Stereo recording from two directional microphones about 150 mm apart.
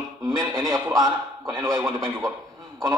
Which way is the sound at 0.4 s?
30° right (ahead or behind).